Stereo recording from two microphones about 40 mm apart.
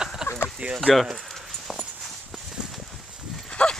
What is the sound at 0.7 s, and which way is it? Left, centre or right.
Speech, centre.